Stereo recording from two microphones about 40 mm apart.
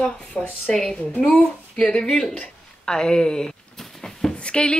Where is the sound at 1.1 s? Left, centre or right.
Left.